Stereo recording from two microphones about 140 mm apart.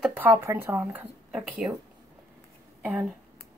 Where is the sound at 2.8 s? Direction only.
5° right (ahead or behind).